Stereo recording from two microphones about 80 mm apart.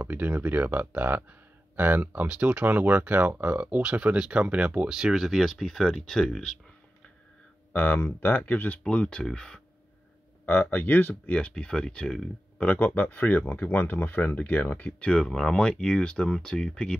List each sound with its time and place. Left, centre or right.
0.0 s speech: right; by 6.5 s centre
7.7 s speech: left
10.4 s speech: left
11.3 s speech: centre
12.5 s speech: left